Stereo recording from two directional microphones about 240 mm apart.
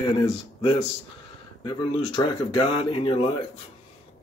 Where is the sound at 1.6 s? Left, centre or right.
Centre.